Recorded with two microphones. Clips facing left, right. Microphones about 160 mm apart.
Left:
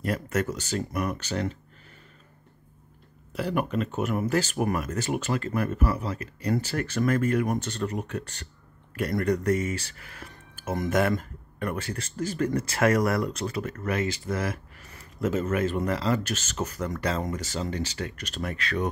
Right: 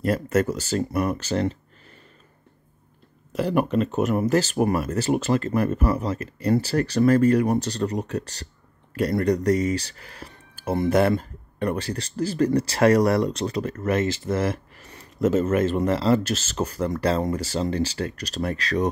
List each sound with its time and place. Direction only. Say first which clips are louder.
0.0 s speech: right 6 dB; 35° right (ahead or behind)
3.3 s speech: right 6 dB; 35° right (ahead or behind)